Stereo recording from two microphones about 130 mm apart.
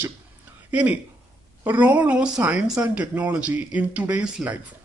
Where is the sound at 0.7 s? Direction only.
10° right (ahead or behind).